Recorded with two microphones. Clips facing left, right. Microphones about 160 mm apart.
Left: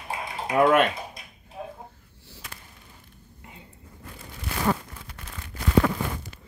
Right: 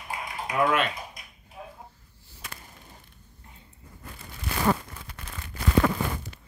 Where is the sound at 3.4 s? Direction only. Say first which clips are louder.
Left 7 dB; 85° left.